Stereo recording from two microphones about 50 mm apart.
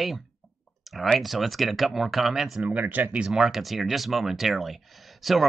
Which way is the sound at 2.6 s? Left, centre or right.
Right.